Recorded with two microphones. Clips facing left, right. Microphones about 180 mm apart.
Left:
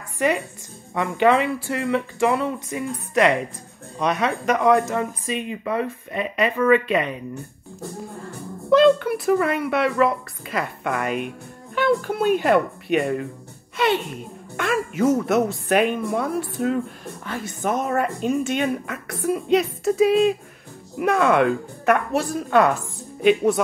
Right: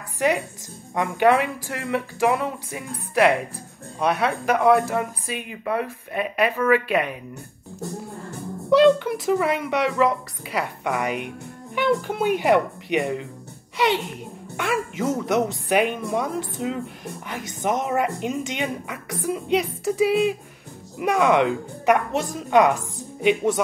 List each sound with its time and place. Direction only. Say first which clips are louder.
0.9 s speech: even; 10° right (ahead or behind)
8.6 s speech: left 1 dB; 15° right (ahead or behind)
14.6 s speech: left 4 dB; 15° right (ahead or behind)
21.0 s speech: left 1 dB; 15° right (ahead or behind)